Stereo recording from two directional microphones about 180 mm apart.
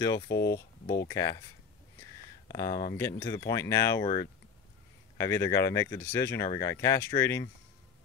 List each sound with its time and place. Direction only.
0.0 s speech: 20° left (ahead or behind)
2.4 s speech: 20° left (ahead or behind)
5.1 s speech: 15° left (ahead or behind)